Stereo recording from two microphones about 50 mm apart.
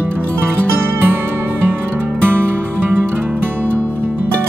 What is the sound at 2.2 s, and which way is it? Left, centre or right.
Music, right.